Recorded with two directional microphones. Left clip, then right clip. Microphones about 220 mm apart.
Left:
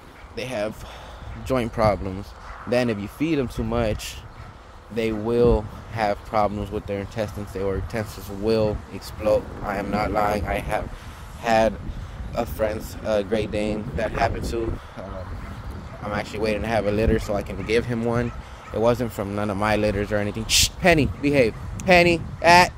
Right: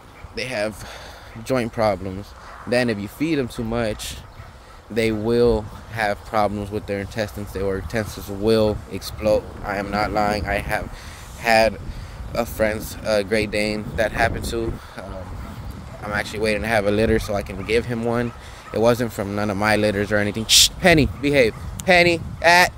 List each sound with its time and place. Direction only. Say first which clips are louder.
0.4 s speech: right 3 dB; 15° right (ahead or behind)
4.9 s speech: right 3 dB; 20° right (ahead or behind)
16.1 s speech: right 3 dB; 15° right (ahead or behind)
18.7 s speech: right 3 dB; 20° right (ahead or behind)